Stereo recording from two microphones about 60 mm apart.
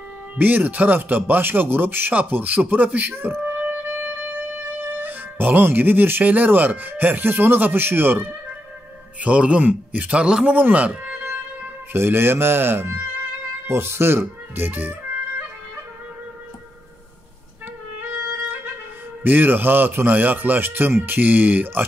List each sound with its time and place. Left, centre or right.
0.4 s speech: right
3.6 s music: right
9.2 s a man's voice: centre
11.2 s speech: right
19.2 s speech: right